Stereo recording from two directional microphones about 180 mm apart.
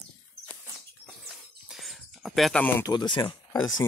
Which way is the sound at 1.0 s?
Centre (ahead or behind).